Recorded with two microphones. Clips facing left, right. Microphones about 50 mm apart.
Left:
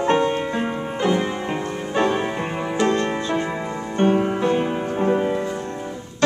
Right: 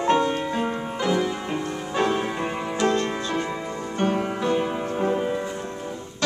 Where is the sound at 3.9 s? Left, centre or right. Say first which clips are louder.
Left 6 dB; left.